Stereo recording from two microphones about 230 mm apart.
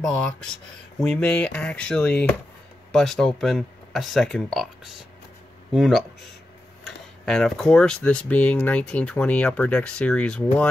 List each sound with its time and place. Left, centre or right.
0.0 s speech: centre
5.7 s speech: centre